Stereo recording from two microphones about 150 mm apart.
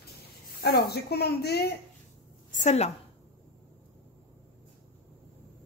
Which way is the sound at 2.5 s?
50° left (ahead or behind).